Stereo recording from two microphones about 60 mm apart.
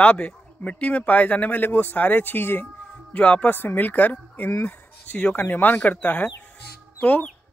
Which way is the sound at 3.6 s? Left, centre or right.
Left.